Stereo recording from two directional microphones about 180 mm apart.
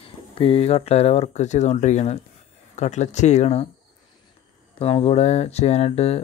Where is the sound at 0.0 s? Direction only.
30° left (ahead or behind).